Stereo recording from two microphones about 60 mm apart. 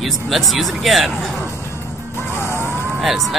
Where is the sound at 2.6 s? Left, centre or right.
Left.